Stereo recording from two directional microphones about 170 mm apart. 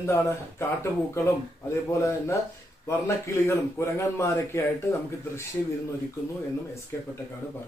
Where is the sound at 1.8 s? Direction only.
15° left (ahead or behind).